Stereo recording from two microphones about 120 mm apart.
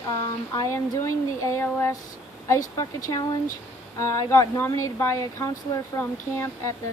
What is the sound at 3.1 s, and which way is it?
Speech, 40° left (ahead or behind).